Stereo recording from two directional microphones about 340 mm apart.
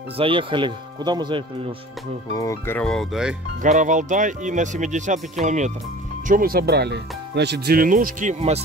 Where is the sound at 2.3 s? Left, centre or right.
Centre.